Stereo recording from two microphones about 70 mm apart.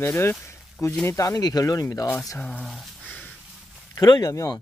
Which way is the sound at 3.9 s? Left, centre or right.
Left.